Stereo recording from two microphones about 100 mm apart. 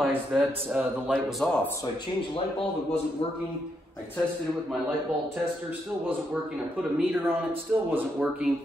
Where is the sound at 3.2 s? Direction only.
65° left (ahead or behind).